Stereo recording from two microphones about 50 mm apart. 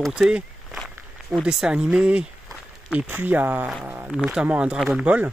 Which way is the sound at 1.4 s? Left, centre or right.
Centre.